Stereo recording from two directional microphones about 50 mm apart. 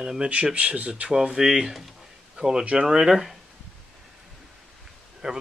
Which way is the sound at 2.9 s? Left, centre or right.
Centre.